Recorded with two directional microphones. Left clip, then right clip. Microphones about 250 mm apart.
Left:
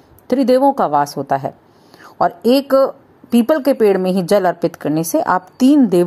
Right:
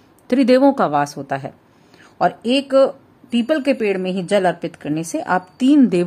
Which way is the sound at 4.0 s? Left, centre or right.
Centre.